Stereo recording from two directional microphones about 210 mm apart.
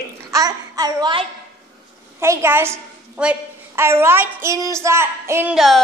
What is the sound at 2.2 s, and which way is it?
A woman's voice, 10° right (ahead or behind).